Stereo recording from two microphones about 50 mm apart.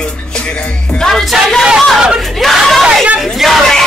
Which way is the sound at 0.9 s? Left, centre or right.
Centre.